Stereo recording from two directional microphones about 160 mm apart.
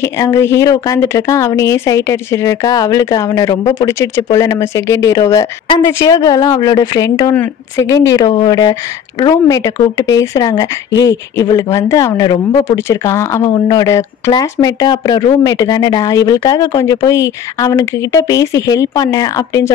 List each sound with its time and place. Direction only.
0.0 s speech: 15° left (ahead or behind)